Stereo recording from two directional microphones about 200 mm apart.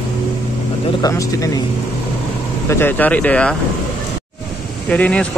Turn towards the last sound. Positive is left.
turn(degrees=5)  # may be behind; listen again after turning